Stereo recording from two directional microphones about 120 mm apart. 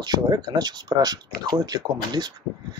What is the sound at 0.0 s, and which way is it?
Speech, 35° right (ahead or behind).